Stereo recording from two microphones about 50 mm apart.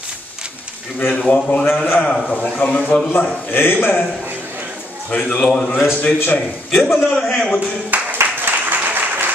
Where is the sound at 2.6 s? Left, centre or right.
Left.